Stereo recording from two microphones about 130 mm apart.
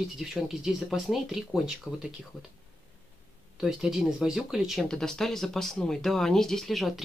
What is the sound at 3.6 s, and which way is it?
Speech, 5° right (ahead or behind).